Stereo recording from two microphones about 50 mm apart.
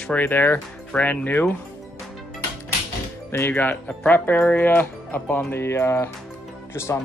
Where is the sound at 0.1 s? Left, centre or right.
Left.